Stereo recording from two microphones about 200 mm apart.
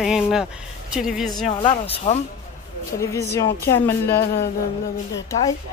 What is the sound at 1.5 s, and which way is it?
Speech, 25° left (ahead or behind).